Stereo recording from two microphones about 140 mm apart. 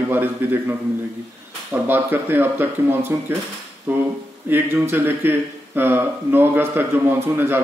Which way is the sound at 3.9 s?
10° right (ahead or behind).